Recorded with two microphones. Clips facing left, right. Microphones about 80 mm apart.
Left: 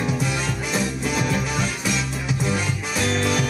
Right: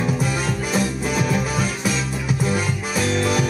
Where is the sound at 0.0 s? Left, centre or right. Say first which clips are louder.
Right 2 dB; centre.